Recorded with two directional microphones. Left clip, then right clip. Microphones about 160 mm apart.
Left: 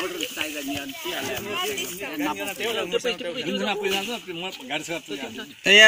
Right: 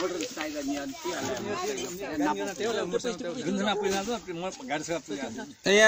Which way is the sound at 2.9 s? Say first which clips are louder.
Left 5 dB; 75° right (ahead or behind).